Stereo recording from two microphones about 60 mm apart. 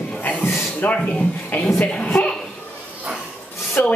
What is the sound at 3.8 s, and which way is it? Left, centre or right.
Speech, left.